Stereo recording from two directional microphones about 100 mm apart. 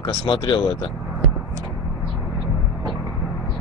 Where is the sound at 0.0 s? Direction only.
55° left (ahead or behind).